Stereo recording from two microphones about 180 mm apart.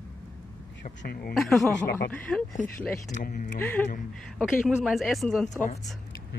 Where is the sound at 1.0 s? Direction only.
55° left (ahead or behind).